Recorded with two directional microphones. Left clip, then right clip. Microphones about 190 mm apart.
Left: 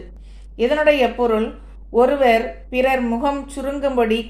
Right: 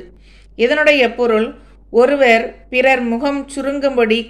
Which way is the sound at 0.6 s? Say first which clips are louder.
Right 3 dB; 25° right (ahead or behind).